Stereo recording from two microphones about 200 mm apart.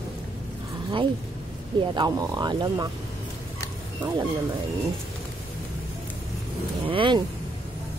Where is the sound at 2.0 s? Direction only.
20° right (ahead or behind).